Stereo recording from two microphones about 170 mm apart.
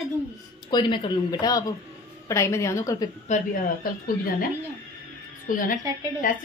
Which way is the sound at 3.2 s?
50° left (ahead or behind).